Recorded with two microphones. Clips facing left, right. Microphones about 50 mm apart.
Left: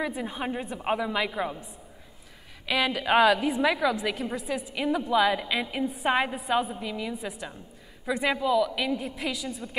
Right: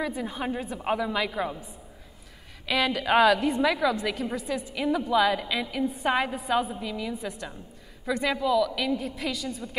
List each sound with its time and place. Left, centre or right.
0.0 s a woman's voice: centre
6.3 s a woman's voice: centre